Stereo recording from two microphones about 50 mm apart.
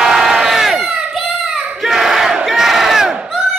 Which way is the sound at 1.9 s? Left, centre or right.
Centre.